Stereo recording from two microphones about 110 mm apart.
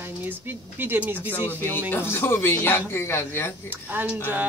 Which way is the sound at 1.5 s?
20° left (ahead or behind).